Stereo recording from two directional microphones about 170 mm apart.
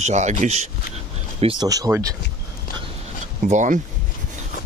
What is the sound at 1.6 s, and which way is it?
Speech, 20° right (ahead or behind).